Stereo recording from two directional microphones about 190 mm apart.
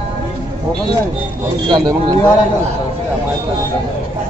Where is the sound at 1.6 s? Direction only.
20° right (ahead or behind).